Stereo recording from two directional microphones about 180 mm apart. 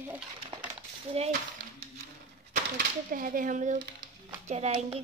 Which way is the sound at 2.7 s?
50° right (ahead or behind).